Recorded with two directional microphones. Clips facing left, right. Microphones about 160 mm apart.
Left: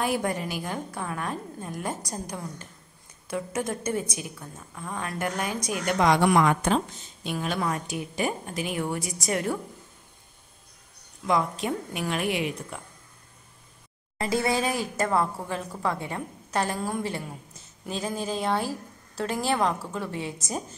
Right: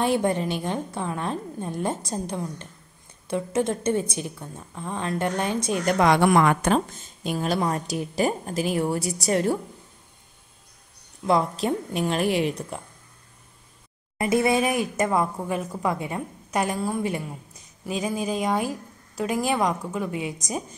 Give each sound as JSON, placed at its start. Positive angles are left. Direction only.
{"t": 0.0, "sound": "a woman's voice", "side_deg": -25}
{"t": 5.9, "sound": "a woman's voice", "side_deg": -60}
{"t": 7.3, "sound": "a woman's voice", "side_deg": -35}
{"t": 11.2, "sound": "a woman's voice", "side_deg": -35}
{"t": 14.1, "sound": "a woman's voice", "side_deg": -20}